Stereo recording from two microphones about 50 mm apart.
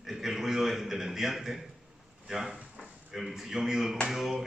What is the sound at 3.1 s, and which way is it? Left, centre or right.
A man's voice, centre.